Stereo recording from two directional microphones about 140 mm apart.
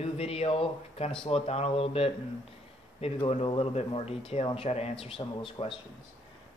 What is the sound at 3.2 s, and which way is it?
A man's voice, 40° left (ahead or behind).